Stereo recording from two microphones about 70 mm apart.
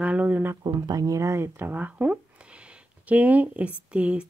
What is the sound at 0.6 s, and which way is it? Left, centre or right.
Speech, right.